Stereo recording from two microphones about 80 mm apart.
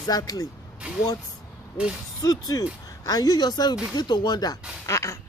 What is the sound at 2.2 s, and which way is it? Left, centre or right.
A man's voice, left.